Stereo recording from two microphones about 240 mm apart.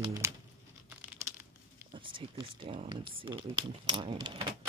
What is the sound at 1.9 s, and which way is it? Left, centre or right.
Speech, right.